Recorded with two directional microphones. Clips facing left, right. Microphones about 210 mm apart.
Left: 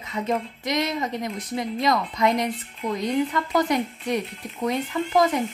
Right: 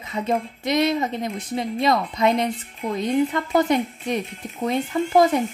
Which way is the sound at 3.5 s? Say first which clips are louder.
Right 3 dB; 25° right (ahead or behind).